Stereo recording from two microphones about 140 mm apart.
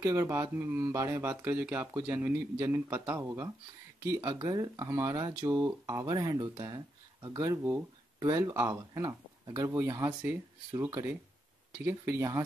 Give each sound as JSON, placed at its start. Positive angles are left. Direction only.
{"t": 0.0, "sound": "speech", "side_deg": -20}